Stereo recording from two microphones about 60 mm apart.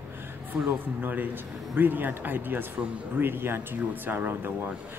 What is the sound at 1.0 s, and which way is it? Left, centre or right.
Speech, right.